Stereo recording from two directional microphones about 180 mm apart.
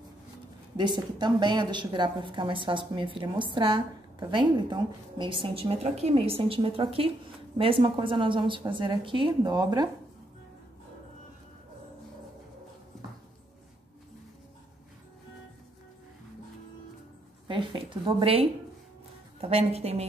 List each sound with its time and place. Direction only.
0.7 s a woman's voice: 25° right (ahead or behind)
17.5 s a woman's voice: 25° right (ahead or behind)